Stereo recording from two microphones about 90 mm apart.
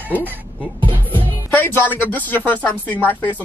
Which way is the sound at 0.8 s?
65° right (ahead or behind).